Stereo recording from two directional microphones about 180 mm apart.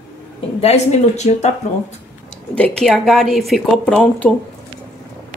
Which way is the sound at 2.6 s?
Centre (ahead or behind).